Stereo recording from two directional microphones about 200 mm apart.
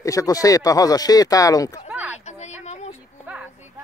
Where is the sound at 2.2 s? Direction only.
35° left (ahead or behind).